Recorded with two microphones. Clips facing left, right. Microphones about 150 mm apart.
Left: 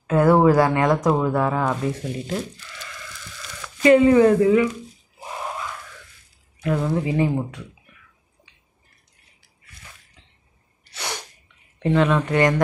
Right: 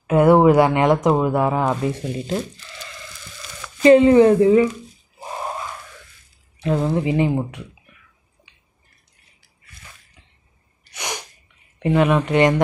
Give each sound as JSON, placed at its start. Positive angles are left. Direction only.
{"t": 0.0, "sound": "speech", "side_deg": -20}
{"t": 5.2, "sound": "a sound", "side_deg": -30}
{"t": 6.6, "sound": "speech", "side_deg": -25}
{"t": 10.9, "sound": "sneeze", "side_deg": -15}
{"t": 11.8, "sound": "speech", "side_deg": -15}